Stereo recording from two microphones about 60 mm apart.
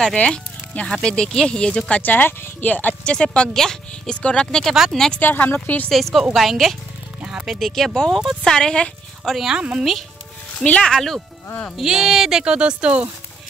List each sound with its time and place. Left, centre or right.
0.0 s speech: centre
5.2 s speech: left
5.9 s a woman's voice: centre
7.2 s speech: centre
7.5 s a woman's voice: centre
7.9 s speech: centre
9.3 s a woman's voice: centre
9.6 s speech: centre
10.6 s speech: centre
11.7 s speech: centre